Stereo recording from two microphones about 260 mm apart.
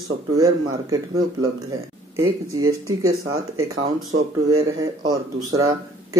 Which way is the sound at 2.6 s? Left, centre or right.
Centre.